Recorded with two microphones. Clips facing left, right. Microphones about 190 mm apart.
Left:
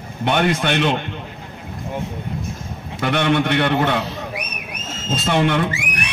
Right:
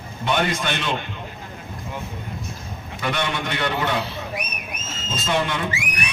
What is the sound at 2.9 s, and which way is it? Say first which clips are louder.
A man's voice: left 7 dB; 60° left (ahead or behind).